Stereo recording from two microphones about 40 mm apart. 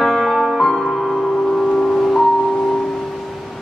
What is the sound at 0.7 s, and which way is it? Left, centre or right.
Music, centre.